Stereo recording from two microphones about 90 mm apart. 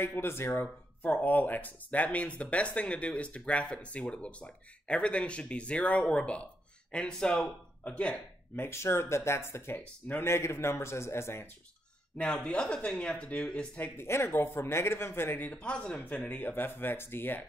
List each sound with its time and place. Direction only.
0.0 s speech: 30° left (ahead or behind); by 8.2 s 15° left (ahead or behind)
8.5 s speech: 30° left (ahead or behind)
12.2 s speech: 10° left (ahead or behind)
13.7 s speech: 25° left (ahead or behind)